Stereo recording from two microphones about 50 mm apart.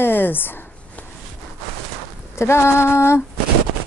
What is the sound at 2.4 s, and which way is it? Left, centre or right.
Female singing, left.